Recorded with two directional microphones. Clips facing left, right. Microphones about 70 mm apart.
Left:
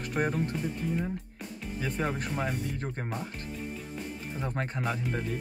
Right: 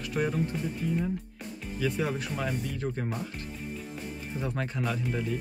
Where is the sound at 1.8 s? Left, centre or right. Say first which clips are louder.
Right 2 dB; left.